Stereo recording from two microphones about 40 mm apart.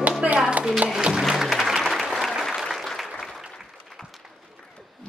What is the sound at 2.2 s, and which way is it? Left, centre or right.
Applause, centre.